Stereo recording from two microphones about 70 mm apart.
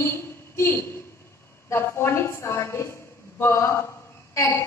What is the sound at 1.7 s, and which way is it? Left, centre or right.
A woman's voice, left.